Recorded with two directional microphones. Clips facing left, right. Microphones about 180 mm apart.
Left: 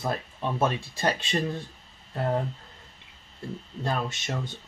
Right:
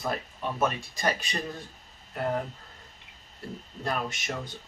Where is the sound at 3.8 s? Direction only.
25° left (ahead or behind).